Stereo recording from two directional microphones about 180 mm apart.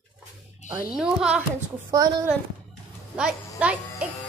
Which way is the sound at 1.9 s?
20° right (ahead or behind).